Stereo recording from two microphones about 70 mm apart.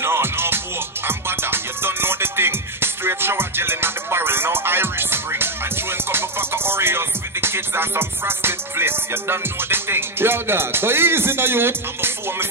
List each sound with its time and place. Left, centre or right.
0.0 s music: right